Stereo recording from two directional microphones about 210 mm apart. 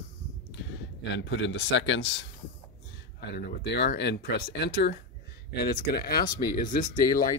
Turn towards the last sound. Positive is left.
turn(degrees=40)  # may be behind; listen again after turning